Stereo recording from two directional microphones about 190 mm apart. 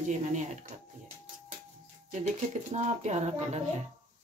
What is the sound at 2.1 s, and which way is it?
A woman's voice, 40° right (ahead or behind).